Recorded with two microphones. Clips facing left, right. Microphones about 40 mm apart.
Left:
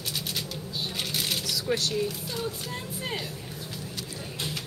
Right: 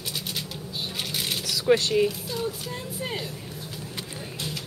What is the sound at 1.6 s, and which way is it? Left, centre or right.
Speech, right.